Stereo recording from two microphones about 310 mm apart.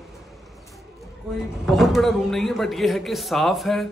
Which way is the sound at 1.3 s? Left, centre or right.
Centre.